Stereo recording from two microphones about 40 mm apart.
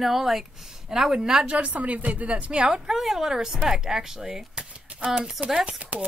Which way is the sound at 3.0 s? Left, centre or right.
Centre.